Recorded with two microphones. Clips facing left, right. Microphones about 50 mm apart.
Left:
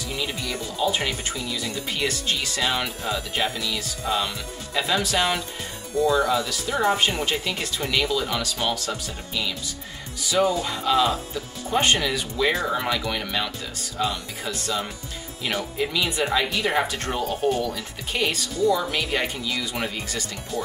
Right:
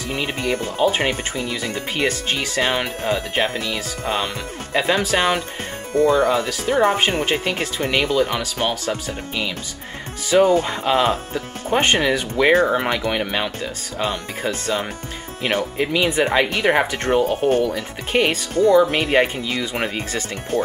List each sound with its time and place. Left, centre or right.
0.1 s speech: right